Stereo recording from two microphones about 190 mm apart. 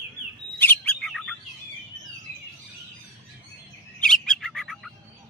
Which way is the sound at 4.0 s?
5° left (ahead or behind).